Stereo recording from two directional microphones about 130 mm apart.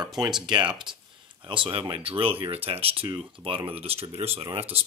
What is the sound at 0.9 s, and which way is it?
Speech, 35° right (ahead or behind).